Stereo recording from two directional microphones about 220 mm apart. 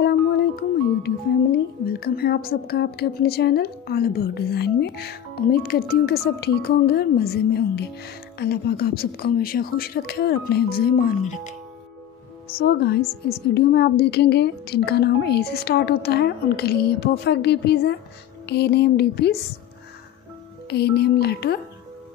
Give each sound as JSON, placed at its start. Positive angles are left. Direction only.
{"t": 1.0, "sound": "speech", "side_deg": 50}
{"t": 12.5, "sound": "speech", "side_deg": 45}
{"t": 20.7, "sound": "speech", "side_deg": 50}